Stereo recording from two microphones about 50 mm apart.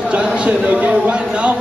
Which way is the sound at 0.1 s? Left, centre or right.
Right.